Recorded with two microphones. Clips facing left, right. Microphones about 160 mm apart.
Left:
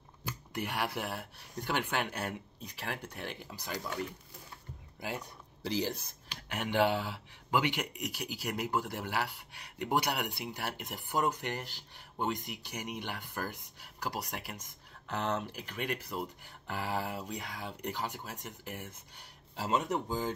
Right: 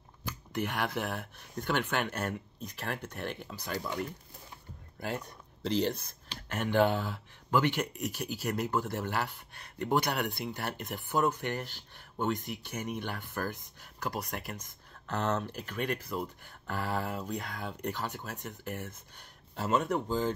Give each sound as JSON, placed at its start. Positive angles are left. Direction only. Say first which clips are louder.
{"t": 0.7, "sound": "speech", "louder": "right 1 dB", "side_deg": 10}
{"t": 5.7, "sound": "speech", "louder": "right 4 dB", "side_deg": -60}
{"t": 6.5, "sound": "speech", "louder": "right 2 dB", "side_deg": 15}